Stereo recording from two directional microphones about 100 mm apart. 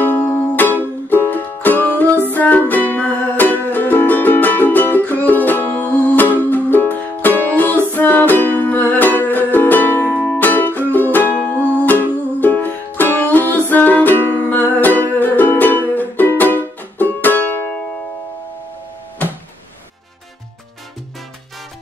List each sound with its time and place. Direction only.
0.0 s music: 20° left (ahead or behind)